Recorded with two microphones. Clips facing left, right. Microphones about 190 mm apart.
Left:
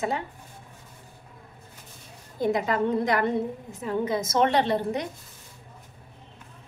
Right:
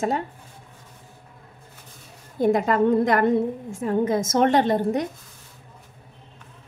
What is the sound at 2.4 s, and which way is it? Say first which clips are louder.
A woman's voice: right 5 dB; 50° right (ahead or behind).